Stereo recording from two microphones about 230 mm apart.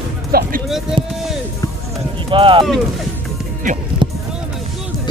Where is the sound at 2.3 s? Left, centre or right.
Right.